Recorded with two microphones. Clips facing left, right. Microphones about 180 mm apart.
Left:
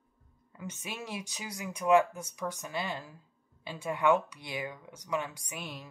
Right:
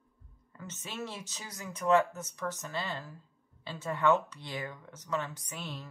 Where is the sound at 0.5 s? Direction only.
10° left (ahead or behind).